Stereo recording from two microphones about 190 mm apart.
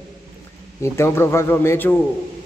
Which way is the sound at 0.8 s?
15° left (ahead or behind).